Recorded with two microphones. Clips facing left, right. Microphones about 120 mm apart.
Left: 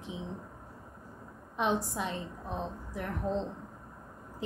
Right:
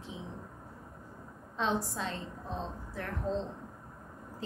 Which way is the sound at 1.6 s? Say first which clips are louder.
Left 2 dB; 15° left (ahead or behind).